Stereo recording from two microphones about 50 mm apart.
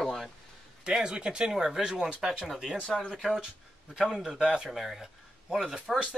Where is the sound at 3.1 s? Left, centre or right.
Centre.